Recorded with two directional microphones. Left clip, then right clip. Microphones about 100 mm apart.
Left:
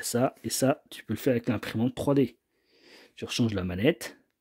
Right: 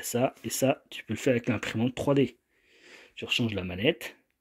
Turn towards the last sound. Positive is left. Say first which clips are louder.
# left 1 dB
turn(degrees=75)  # may be behind; listen again after turning